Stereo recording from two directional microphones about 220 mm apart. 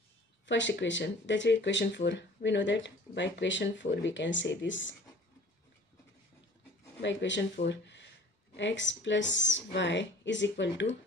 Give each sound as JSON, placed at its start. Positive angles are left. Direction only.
{"t": 0.5, "sound": "speech", "side_deg": 55}
{"t": 7.0, "sound": "speech", "side_deg": 55}